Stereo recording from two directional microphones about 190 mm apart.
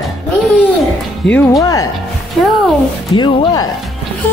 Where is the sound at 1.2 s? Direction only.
5° left (ahead or behind).